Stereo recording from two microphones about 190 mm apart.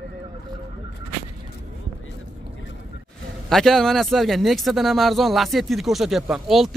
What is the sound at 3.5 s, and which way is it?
Speech, centre (ahead or behind).